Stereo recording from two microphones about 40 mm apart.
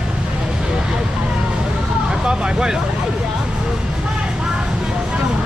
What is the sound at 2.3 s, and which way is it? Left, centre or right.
Speech, right.